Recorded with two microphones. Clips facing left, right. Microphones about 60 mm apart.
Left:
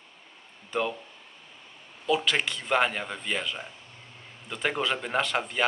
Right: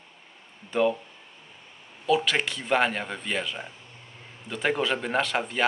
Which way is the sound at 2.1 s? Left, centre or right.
Centre.